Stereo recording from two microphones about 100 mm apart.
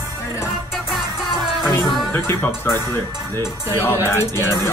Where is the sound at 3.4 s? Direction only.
25° left (ahead or behind).